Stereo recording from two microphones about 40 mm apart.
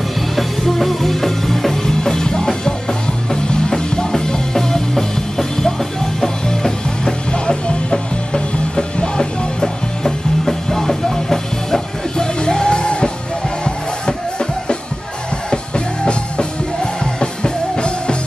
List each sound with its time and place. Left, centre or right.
0.4 s music: centre; by 18.1 s left